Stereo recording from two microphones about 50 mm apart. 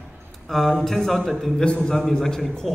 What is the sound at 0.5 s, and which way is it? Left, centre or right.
Speech, centre.